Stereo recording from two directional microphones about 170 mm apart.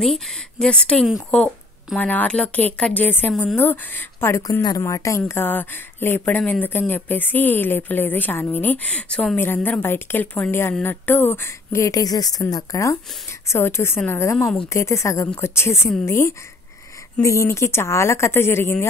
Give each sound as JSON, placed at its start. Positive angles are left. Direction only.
{"t": 0.0, "sound": "speech", "side_deg": 0}